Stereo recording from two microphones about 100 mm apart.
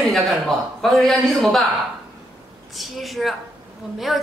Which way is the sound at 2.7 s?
Centre (ahead or behind).